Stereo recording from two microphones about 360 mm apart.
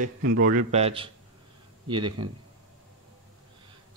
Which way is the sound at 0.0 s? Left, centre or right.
Right.